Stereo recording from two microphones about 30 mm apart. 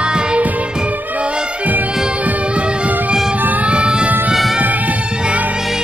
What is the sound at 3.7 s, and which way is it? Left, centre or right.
Music, right.